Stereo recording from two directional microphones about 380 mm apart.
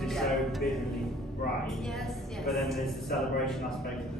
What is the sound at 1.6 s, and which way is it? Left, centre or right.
A woman's voice, centre.